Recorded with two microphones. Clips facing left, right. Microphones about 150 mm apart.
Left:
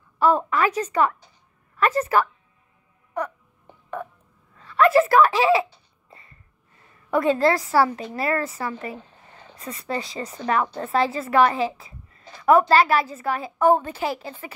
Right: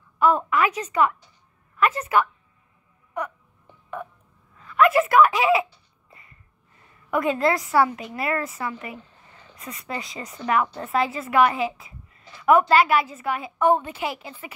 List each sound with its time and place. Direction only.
0.5 s a woman's voice: 35° left (ahead or behind)
4.6 s a sound: 30° left (ahead or behind)
7.1 s a woman's voice: 30° left (ahead or behind)